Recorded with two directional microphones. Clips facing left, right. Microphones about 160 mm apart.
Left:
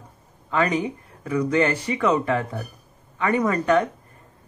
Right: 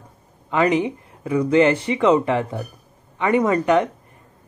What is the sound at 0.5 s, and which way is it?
Speech, 20° right (ahead or behind).